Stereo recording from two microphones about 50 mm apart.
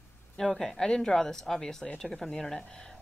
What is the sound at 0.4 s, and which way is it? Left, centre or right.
Speech, centre.